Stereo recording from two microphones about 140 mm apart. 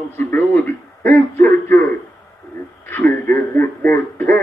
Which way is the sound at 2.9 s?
15° left (ahead or behind).